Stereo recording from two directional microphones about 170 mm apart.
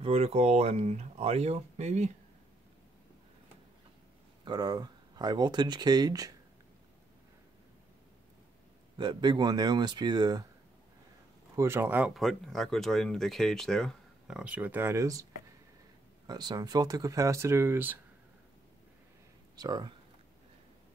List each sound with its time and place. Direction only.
0.0 s speech: 35° right (ahead or behind)
4.5 s speech: 25° right (ahead or behind)
8.9 s speech: 25° right (ahead or behind)
11.5 s speech: 15° right (ahead or behind)
12.1 s speech: centre (ahead or behind); by 15.2 s 20° right (ahead or behind)
16.3 s speech: 25° right (ahead or behind)
19.5 s speech: 25° right (ahead or behind)